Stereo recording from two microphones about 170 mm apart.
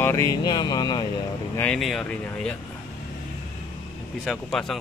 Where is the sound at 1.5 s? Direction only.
5° left (ahead or behind).